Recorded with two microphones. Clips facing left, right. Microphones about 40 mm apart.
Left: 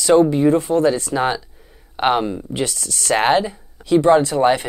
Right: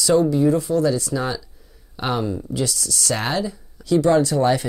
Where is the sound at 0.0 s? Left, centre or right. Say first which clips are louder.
Left 3 dB; left.